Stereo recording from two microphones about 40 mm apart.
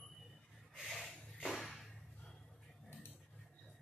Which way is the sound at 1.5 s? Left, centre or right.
Centre.